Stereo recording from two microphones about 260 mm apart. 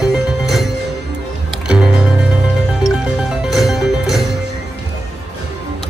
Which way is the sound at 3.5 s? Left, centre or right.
Centre.